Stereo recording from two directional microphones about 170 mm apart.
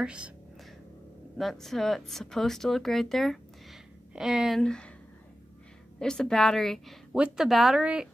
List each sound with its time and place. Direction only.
0.0 s a woman's voice: 5° right (ahead or behind)
1.4 s a woman's voice: centre (ahead or behind)
5.9 s a woman's voice: 5° left (ahead or behind)